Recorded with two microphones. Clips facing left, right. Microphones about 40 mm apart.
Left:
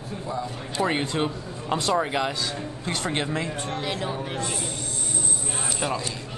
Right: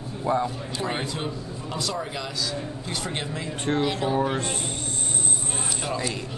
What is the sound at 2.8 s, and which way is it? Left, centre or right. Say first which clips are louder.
Speech: left 6 dB; centre.